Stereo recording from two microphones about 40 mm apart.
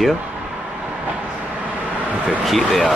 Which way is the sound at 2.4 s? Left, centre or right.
Centre.